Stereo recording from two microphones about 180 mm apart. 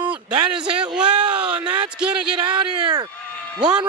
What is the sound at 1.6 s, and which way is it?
Speech, 25° right (ahead or behind).